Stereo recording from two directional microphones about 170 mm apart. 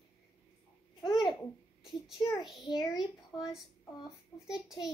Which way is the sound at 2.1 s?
25° left (ahead or behind).